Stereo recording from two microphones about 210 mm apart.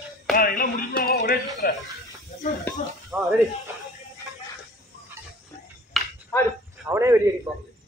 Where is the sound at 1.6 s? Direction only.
45° left (ahead or behind).